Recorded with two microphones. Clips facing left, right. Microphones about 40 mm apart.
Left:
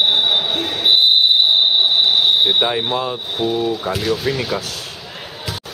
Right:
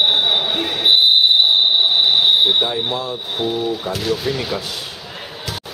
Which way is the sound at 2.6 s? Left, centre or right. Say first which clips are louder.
Left 2 dB; left.